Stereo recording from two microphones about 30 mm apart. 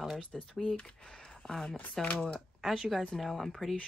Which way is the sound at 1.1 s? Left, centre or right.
Left.